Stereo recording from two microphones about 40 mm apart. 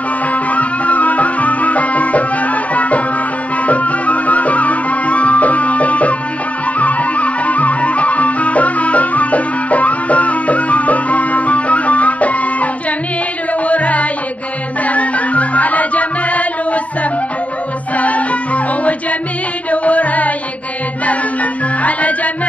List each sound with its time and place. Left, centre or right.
0.3 s music: left
13.7 s music: left
17.9 s music: left
21.8 s music: left